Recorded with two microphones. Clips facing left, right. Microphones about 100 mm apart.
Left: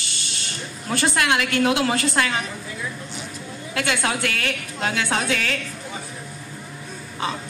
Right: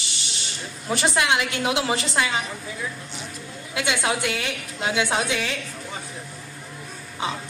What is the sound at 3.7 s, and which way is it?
A woman's voice, 20° right (ahead or behind).